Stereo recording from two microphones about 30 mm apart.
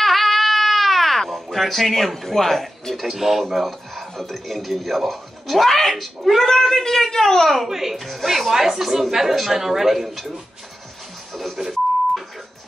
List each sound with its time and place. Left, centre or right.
0.0 s baby cry: centre
1.3 s speech: centre
3.1 s a woman's voice: centre
7.6 s a woman's voice: centre
11.6 s speech: right